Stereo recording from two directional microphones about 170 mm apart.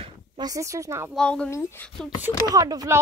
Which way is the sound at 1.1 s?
5° left (ahead or behind).